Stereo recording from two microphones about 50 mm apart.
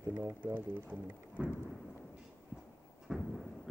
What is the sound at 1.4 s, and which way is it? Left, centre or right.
Thunder, right.